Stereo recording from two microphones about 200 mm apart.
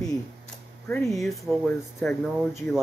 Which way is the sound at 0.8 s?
5° left (ahead or behind).